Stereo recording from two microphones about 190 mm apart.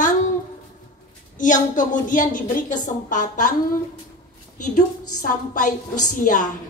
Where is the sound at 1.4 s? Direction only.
45° left (ahead or behind).